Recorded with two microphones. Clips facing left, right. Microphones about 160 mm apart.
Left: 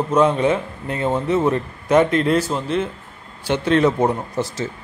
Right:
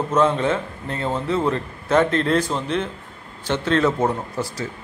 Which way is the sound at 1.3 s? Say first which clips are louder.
Left 2 dB; 20° left (ahead or behind).